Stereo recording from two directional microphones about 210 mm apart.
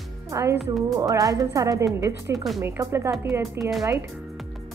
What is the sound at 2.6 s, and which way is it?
A woman's voice, 15° right (ahead or behind).